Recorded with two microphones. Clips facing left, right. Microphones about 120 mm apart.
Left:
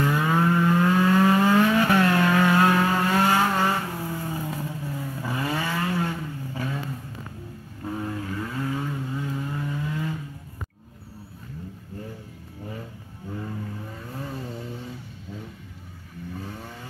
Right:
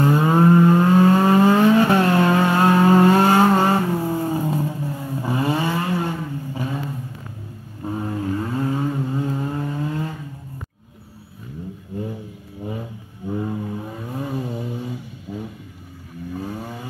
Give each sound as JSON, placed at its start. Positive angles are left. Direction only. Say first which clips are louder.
{"t": 0.0, "sound": "vehicle", "louder": "right 6 dB", "side_deg": -30}
{"t": 7.8, "sound": "vehicle", "louder": "right 5 dB", "side_deg": -25}
{"t": 13.3, "sound": "vehicle", "louder": "right 8 dB", "side_deg": -20}